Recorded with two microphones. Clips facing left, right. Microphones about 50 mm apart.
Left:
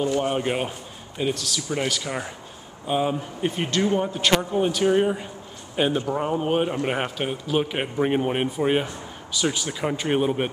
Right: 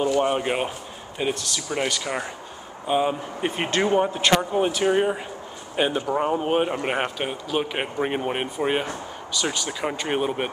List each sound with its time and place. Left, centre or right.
0.2 s a man's voice: centre
3.5 s speech: right; by 9.7 s centre
9.7 s speech: centre